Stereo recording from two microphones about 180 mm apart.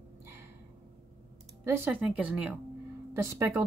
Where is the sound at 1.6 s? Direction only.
10° right (ahead or behind).